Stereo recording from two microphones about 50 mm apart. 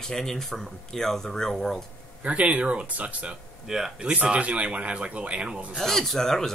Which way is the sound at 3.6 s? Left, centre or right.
Centre.